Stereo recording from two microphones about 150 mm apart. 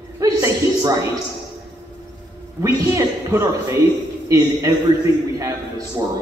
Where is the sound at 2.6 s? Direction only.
20° right (ahead or behind).